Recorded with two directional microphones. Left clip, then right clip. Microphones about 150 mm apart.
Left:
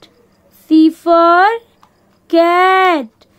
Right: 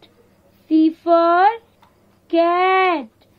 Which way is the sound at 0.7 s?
50° left (ahead or behind).